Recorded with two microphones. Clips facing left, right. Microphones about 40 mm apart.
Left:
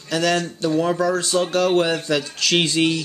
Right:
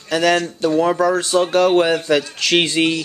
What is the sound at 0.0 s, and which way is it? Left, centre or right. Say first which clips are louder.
Speech: right 4 dB; centre.